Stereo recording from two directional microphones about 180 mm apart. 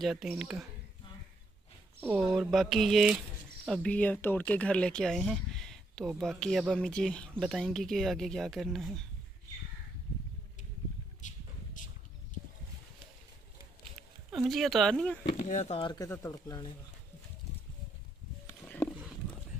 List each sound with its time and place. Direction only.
0.0 s speech: centre (ahead or behind)
2.0 s speech: centre (ahead or behind)
11.1 s a sound: 45° left (ahead or behind)
14.3 s speech: centre (ahead or behind)
15.2 s speech: 40° left (ahead or behind); by 16.7 s 20° left (ahead or behind)
18.7 s horse: 10° left (ahead or behind)